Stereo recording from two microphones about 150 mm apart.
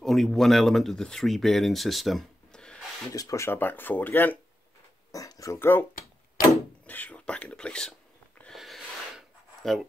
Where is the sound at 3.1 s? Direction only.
20° left (ahead or behind); by 7.9 s 5° left (ahead or behind).